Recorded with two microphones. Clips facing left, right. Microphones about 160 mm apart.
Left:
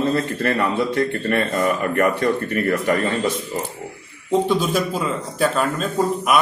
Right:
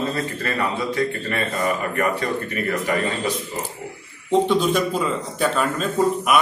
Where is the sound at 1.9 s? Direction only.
50° left (ahead or behind).